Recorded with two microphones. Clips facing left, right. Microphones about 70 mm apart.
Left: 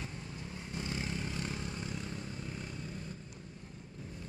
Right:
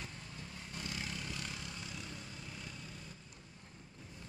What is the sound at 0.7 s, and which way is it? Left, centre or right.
Vehicle, left.